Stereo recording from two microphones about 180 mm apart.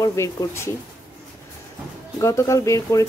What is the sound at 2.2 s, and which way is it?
Speech, 15° left (ahead or behind).